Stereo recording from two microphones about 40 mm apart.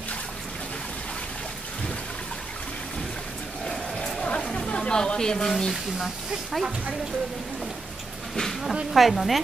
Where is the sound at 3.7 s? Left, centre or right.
Centre.